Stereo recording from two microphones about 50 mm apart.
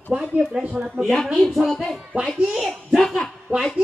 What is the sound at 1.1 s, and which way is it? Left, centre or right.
Speech, centre.